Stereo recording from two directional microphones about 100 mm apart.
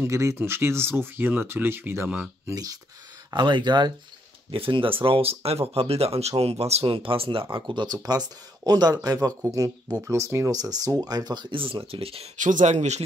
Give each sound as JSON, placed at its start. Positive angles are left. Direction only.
{"t": 0.0, "sound": "speech", "side_deg": -30}
{"t": 2.4, "sound": "speech", "side_deg": -35}
{"t": 3.3, "sound": "speech", "side_deg": -50}
{"t": 4.5, "sound": "speech", "side_deg": -65}
{"t": 7.4, "sound": "speech", "side_deg": -50}
{"t": 11.5, "sound": "speech", "side_deg": -60}